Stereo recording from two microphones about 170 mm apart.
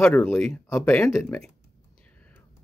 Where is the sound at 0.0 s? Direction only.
10° left (ahead or behind).